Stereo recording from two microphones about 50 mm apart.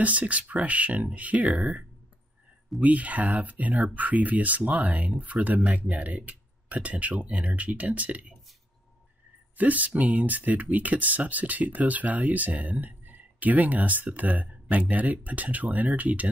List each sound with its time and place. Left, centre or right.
0.0 s speech: right
9.6 s speech: right